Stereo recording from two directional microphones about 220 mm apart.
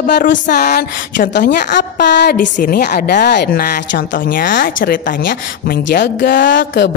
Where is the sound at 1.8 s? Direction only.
50° left (ahead or behind).